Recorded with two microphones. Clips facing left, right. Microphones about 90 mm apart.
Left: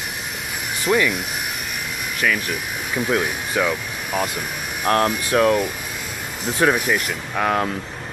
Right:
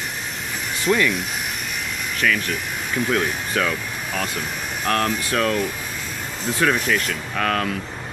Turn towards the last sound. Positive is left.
turn(degrees=15)  # may be behind; listen again after turning